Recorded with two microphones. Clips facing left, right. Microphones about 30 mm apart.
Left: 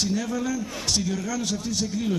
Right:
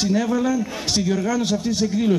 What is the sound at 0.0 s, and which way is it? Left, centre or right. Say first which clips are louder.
A man's voice: right 6 dB; right.